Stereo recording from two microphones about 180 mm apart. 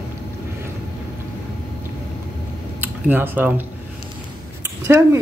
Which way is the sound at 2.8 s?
10° right (ahead or behind).